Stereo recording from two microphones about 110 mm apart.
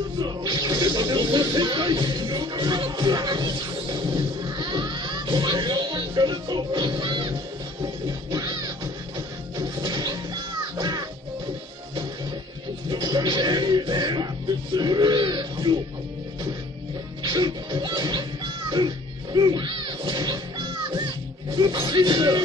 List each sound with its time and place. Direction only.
0.2 s a sound: 40° right (ahead or behind)
7.8 s music: 35° right (ahead or behind)
12.9 s music: 40° right (ahead or behind)
17.2 s music: 45° right (ahead or behind)